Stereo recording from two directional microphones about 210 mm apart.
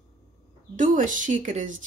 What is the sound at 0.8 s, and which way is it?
Speech, 40° right (ahead or behind).